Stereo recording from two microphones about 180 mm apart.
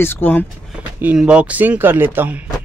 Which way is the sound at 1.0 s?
5° right (ahead or behind).